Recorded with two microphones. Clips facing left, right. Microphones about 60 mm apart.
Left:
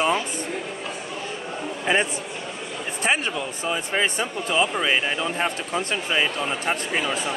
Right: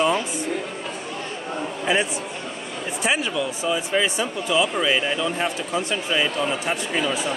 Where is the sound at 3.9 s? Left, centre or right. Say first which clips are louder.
Right 2 dB; left.